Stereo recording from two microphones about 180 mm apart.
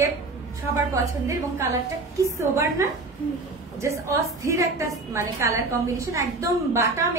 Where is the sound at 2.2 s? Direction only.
15° right (ahead or behind).